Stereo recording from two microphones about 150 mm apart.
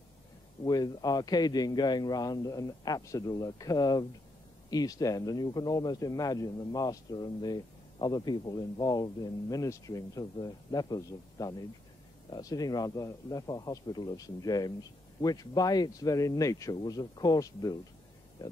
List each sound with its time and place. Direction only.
0.7 s speech: 25° left (ahead or behind)